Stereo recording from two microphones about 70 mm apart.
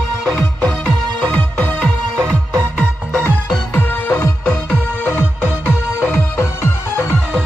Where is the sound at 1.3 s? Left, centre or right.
Centre.